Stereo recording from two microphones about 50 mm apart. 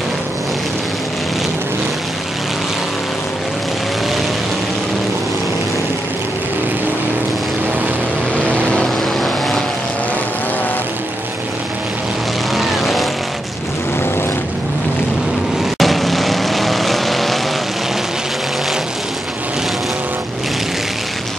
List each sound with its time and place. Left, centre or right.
8.5 s vehicle: left
12.5 s vehicle: centre
15.8 s vehicle: centre